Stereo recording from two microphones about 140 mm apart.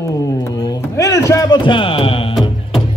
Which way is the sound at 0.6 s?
25° left (ahead or behind).